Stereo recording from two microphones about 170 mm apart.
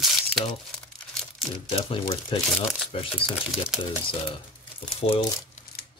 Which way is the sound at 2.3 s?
30° left (ahead or behind).